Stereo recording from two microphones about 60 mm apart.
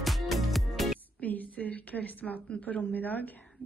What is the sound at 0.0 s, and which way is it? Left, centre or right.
Music, centre.